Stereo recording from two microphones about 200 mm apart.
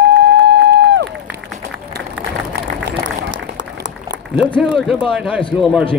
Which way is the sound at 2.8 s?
55° right (ahead or behind).